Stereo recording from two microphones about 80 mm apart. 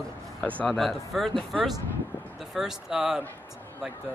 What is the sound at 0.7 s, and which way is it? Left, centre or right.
Speech, centre.